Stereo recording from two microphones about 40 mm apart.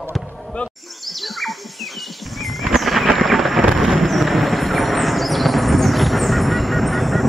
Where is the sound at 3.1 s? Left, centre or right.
Centre.